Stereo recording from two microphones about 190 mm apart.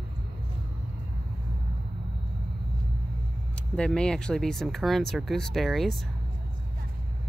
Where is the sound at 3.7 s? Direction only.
5° left (ahead or behind).